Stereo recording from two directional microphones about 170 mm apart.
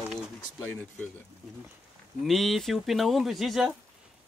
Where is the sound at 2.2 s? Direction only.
Centre (ahead or behind).